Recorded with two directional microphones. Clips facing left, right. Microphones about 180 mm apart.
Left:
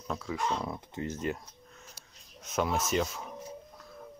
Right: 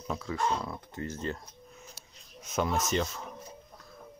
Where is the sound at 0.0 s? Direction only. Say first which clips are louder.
Even; centre (ahead or behind).